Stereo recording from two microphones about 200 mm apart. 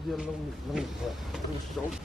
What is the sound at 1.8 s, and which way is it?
Speech, 5° left (ahead or behind).